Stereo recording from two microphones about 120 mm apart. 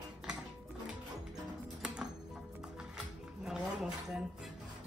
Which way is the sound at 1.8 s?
5° right (ahead or behind).